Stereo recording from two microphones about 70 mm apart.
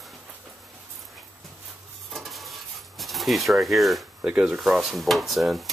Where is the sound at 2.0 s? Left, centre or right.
Centre.